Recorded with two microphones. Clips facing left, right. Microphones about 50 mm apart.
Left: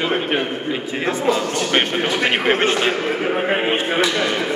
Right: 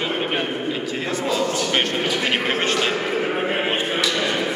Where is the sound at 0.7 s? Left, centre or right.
Left.